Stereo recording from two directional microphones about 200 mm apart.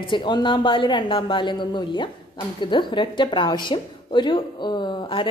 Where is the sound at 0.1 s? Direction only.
25° left (ahead or behind).